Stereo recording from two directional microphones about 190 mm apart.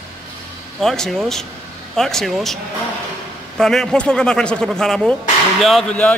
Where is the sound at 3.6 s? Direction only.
Centre (ahead or behind).